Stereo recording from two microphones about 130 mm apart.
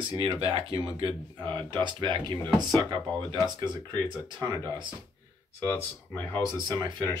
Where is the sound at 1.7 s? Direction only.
35° right (ahead or behind).